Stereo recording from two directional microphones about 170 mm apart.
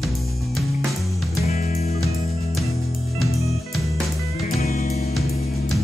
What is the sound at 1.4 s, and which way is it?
Music, 40° left (ahead or behind).